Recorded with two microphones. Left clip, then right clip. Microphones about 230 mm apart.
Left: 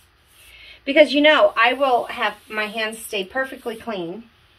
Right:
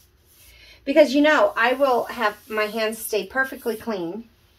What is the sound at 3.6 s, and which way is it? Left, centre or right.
Speech, right.